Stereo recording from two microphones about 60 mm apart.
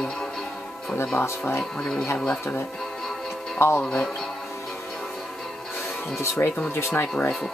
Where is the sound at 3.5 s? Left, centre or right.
Left.